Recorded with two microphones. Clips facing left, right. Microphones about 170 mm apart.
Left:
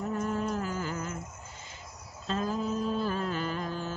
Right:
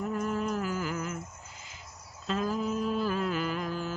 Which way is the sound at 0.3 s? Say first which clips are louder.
Right 1 dB; 10° right (ahead or behind).